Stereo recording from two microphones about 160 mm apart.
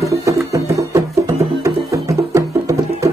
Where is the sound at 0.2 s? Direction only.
20° right (ahead or behind).